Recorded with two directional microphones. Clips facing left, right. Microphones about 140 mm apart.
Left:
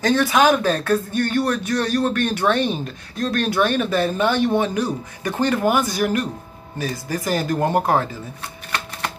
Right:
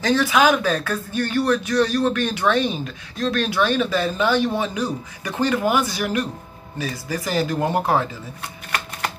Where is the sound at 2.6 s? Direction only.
45° left (ahead or behind).